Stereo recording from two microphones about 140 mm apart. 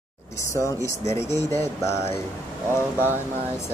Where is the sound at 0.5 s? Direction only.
20° left (ahead or behind).